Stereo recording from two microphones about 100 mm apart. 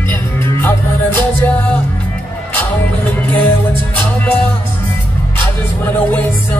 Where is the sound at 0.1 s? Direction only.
20° left (ahead or behind).